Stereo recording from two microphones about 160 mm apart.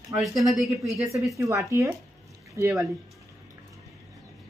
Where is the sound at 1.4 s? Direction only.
20° right (ahead or behind).